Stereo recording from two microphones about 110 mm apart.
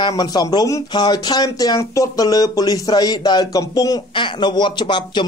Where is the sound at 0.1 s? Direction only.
40° left (ahead or behind).